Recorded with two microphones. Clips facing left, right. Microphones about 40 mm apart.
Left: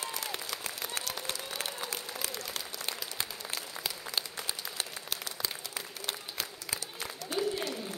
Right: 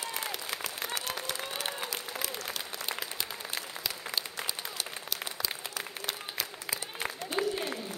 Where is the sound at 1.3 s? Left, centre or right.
Right.